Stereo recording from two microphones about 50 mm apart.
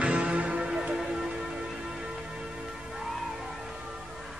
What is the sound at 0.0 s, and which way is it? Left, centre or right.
Music, right.